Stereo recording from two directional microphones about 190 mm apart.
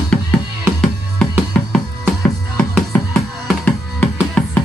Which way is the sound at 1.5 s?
10° left (ahead or behind).